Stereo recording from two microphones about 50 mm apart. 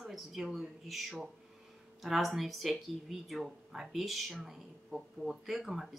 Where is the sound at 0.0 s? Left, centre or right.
Centre.